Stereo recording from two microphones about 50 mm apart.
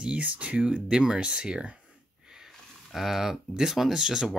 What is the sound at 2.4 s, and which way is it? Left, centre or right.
Speech, centre.